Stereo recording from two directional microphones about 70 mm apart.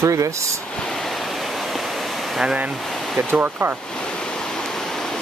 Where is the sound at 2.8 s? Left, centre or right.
Centre.